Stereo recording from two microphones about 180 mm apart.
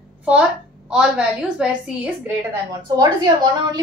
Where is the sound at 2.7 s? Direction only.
20° right (ahead or behind).